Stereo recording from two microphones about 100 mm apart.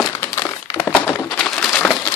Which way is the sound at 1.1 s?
10° left (ahead or behind).